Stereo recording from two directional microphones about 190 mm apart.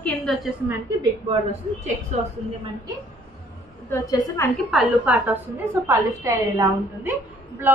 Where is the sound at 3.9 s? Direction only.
15° left (ahead or behind).